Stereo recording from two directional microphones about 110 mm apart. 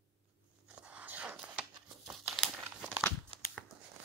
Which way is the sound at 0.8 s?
10° right (ahead or behind).